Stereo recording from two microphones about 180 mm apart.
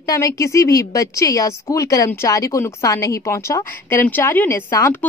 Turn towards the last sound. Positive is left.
turn(degrees=15)  # may be behind; listen again after turning